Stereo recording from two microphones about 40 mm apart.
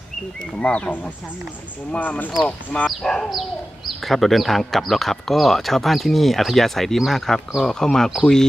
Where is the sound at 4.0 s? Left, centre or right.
Centre.